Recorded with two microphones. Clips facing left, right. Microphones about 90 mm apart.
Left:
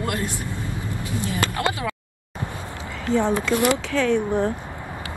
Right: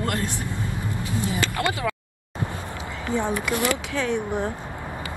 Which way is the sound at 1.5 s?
25° left (ahead or behind).